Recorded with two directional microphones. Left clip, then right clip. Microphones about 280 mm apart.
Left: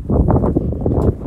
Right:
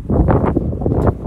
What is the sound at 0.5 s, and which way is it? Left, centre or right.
Wind noise, left.